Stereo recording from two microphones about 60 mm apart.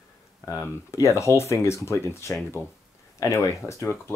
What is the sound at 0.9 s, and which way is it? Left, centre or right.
Speech, left.